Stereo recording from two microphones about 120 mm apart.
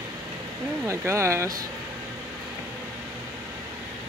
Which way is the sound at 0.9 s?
25° right (ahead or behind).